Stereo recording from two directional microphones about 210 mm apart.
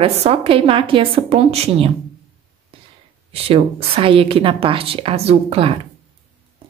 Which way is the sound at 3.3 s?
30° right (ahead or behind).